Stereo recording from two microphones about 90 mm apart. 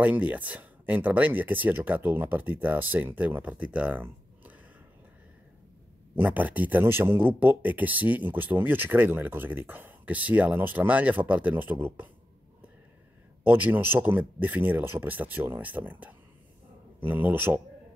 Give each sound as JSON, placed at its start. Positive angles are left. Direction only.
{"t": 0.0, "sound": "speech", "side_deg": -15}
{"t": 6.1, "sound": "speech", "side_deg": -20}
{"t": 13.4, "sound": "speech", "side_deg": -20}